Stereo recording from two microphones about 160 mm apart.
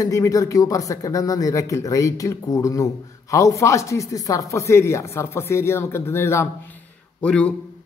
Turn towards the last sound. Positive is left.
turn(degrees=5)  # may be behind; listen again after turning